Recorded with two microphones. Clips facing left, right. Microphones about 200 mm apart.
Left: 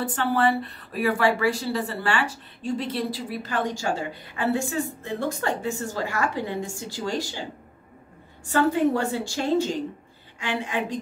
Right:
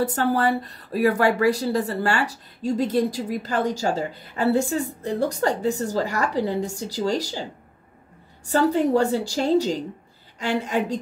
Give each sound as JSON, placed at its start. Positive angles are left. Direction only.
{"t": 0.0, "sound": "speech", "side_deg": -40}
{"t": 8.5, "sound": "speech", "side_deg": -40}